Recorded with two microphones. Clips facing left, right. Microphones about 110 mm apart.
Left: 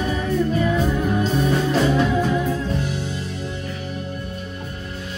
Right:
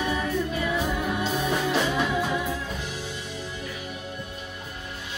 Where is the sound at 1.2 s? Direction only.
Centre (ahead or behind).